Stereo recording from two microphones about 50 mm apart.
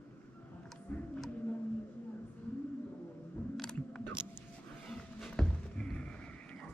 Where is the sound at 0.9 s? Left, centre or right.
Left.